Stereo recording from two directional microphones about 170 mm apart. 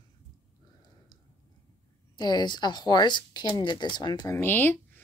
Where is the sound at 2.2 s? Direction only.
25° left (ahead or behind).